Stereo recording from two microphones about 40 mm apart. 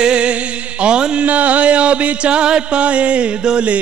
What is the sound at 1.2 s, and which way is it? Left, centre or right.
Music, right.